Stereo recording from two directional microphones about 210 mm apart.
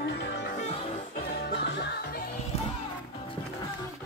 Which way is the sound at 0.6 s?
30° left (ahead or behind).